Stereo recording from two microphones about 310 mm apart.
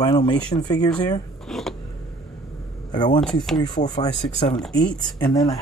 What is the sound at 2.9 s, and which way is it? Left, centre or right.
Speech, centre.